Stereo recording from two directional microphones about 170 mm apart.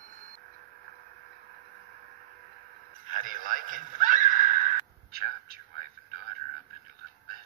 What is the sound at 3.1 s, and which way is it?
Radio, 50° right (ahead or behind).